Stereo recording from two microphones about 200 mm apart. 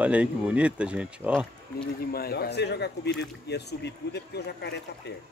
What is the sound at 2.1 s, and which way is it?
Speech, 50° left (ahead or behind).